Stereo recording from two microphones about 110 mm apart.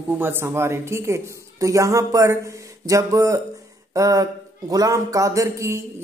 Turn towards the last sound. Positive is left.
turn(degrees=-25)  # may be behind; listen again after turning